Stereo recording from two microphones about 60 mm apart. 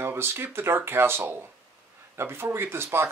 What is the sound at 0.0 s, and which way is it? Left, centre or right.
Speech, right.